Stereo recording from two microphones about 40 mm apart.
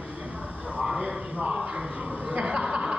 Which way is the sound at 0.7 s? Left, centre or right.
Right.